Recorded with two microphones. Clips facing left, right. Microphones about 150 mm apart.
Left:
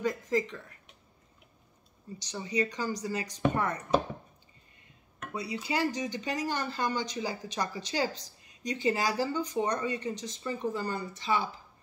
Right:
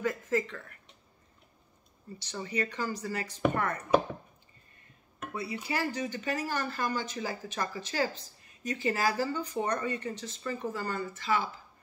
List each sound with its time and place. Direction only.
0.0 s a sound: 15° left (ahead or behind)
2.1 s speech: 15° left (ahead or behind)
5.3 s speech: 20° left (ahead or behind)